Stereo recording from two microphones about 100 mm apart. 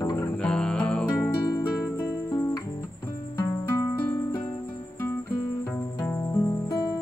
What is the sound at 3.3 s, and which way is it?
Music, 25° left (ahead or behind).